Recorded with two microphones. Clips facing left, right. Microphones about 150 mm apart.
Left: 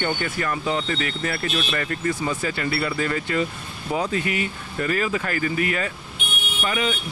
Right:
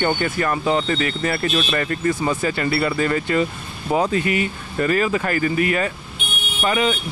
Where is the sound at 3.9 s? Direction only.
65° right (ahead or behind); by 5.9 s 45° right (ahead or behind).